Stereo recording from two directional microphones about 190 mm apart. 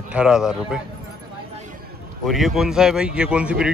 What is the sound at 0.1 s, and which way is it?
Speech, 5° right (ahead or behind).